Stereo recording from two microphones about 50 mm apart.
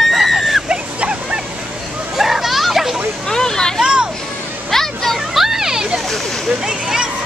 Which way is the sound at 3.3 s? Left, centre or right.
Centre.